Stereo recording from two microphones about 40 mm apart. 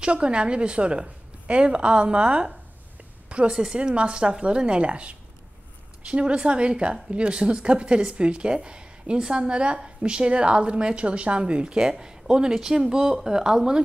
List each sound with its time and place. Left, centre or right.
0.0 s a woman's voice: right
3.3 s a sound: right
3.5 s a woman's voice: centre